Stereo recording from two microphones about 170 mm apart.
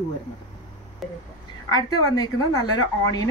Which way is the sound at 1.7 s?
25° left (ahead or behind).